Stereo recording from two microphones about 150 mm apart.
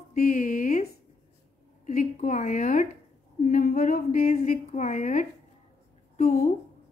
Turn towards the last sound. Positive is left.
turn(degrees=50)  # may be behind; listen again after turning